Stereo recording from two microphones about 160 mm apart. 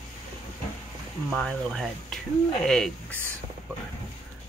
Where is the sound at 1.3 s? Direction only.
5° left (ahead or behind).